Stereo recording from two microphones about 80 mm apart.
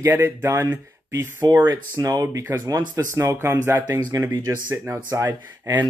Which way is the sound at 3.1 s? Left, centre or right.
Right.